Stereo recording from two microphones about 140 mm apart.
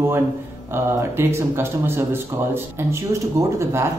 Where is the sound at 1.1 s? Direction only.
15° right (ahead or behind).